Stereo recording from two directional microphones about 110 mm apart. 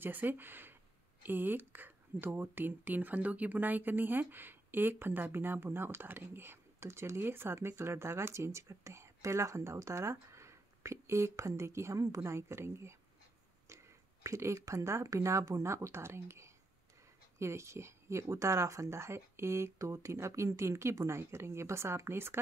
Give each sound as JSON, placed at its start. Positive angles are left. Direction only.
{"t": 0.0, "sound": "speech", "side_deg": -15}
{"t": 14.2, "sound": "speech", "side_deg": -25}